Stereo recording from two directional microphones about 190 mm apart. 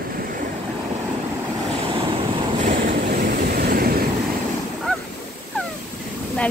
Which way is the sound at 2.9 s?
50° right (ahead or behind).